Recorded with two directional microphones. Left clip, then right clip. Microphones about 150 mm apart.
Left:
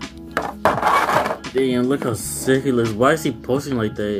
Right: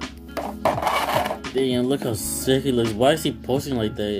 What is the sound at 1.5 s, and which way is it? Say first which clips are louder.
Speech: left 3 dB; 15° right (ahead or behind).